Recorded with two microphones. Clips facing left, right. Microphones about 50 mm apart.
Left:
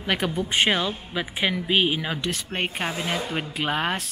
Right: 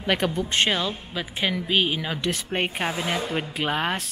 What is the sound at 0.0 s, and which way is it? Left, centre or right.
A man's voice, centre.